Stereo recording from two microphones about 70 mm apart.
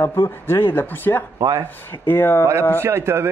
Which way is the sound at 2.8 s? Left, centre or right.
Right.